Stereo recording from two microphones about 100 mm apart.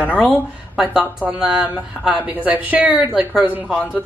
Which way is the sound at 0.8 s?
5° right (ahead or behind).